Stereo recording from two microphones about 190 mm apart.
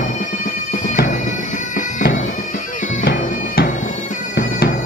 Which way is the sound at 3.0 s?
55° left (ahead or behind).